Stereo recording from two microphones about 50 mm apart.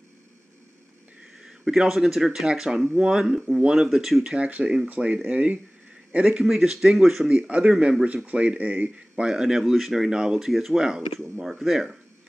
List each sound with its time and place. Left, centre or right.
1.4 s speech: centre
4.8 s speech: right
8.0 s speech: right; by 12.0 s centre